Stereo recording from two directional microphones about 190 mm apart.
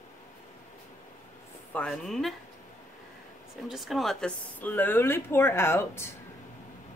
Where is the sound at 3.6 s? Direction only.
Centre (ahead or behind).